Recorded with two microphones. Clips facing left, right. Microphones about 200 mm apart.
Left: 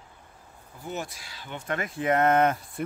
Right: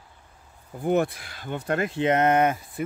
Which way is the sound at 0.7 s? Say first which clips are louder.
Right 12 dB; 55° right (ahead or behind).